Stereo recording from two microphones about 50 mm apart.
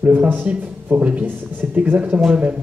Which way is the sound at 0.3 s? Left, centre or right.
Right.